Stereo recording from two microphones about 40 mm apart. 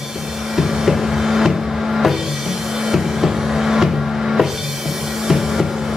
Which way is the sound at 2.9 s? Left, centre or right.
Centre.